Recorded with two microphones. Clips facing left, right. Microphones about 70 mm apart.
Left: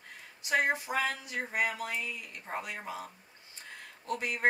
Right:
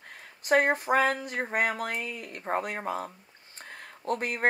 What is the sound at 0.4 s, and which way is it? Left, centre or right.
Speech, right.